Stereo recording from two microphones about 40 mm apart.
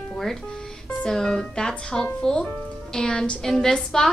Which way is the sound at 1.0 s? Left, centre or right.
Centre.